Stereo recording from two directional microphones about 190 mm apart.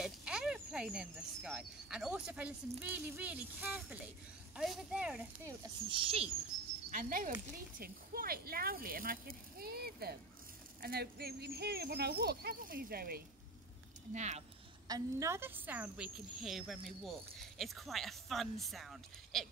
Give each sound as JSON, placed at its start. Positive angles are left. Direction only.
{"t": 0.0, "sound": "speech", "side_deg": -5}
{"t": 5.5, "sound": "speech", "side_deg": -20}
{"t": 6.9, "sound": "speech", "side_deg": -45}
{"t": 14.1, "sound": "speech", "side_deg": -35}
{"t": 14.9, "sound": "speech", "side_deg": -15}